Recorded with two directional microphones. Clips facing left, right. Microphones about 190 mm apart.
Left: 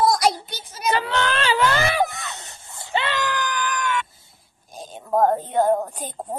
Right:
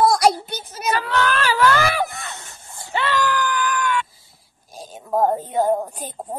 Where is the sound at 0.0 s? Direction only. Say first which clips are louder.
Right 3 dB; 60° right (ahead or behind).